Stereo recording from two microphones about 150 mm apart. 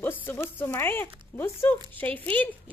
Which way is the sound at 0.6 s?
15° left (ahead or behind).